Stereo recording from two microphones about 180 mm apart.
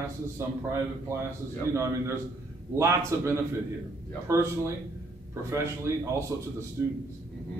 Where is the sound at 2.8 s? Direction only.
15° right (ahead or behind).